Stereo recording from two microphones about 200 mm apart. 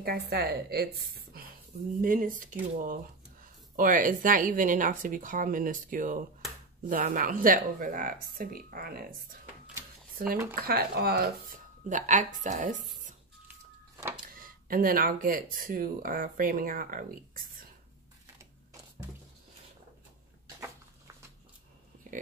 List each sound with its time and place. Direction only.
0.0 s a woman's voice: 50° right (ahead or behind)
10.1 s a woman's voice: 45° right (ahead or behind)
14.2 s speech: 45° right (ahead or behind)